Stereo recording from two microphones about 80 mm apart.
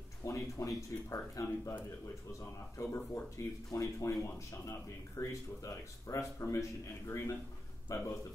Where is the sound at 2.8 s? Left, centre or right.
Left.